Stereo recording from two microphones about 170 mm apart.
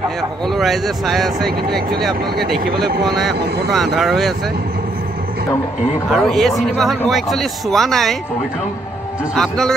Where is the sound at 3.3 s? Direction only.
70° right (ahead or behind).